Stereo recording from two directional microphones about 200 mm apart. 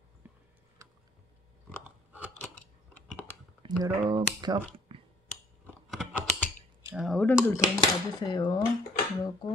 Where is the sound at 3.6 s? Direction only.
20° right (ahead or behind).